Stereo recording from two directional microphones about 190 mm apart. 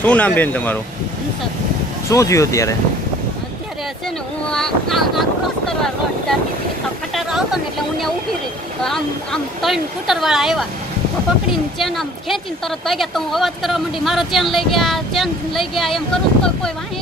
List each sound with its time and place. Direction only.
0.0 s speech: 5° left (ahead or behind)
2.0 s speech: 15° left (ahead or behind)
4.5 s speech: centre (ahead or behind)